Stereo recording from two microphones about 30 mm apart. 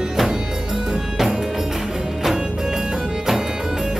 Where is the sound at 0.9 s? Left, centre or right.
Centre.